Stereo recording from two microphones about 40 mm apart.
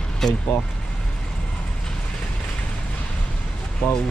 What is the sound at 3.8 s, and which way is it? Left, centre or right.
Speech, left.